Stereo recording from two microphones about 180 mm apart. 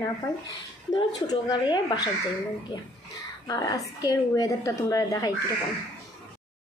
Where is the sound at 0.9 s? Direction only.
25° left (ahead or behind).